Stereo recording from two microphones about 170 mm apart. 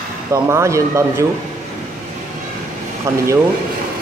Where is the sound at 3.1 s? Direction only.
15° right (ahead or behind).